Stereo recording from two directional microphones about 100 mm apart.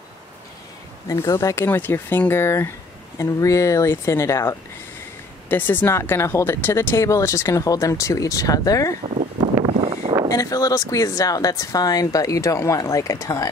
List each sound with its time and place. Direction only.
1.0 s speech: 35° left (ahead or behind)
5.5 s speech: 20° left (ahead or behind); by 8.9 s 35° left (ahead or behind)
9.7 s a sound: 80° right
10.3 s speech: 35° left (ahead or behind)